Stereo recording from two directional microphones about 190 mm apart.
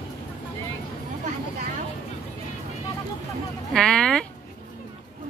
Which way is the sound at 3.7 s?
5° left (ahead or behind).